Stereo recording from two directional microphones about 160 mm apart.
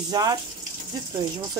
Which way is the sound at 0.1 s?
25° right (ahead or behind).